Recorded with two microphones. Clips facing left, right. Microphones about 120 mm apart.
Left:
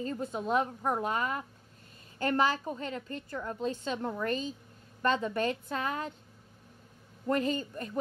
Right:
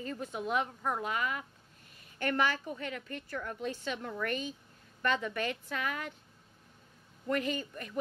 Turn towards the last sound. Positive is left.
turn(degrees=30)  # may be behind; listen again after turning